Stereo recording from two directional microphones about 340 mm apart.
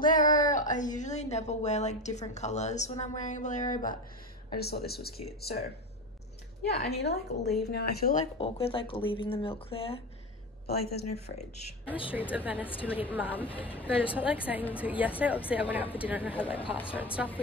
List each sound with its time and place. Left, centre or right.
0.0 s a woman's voice: left
6.7 s speech: centre
7.0 s speech: left
11.0 s speech: left
12.1 s a woman's voice: centre